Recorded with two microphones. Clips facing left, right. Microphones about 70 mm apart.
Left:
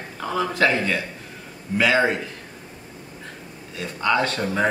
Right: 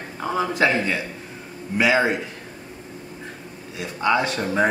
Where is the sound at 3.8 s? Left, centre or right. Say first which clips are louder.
Right 1 dB; centre.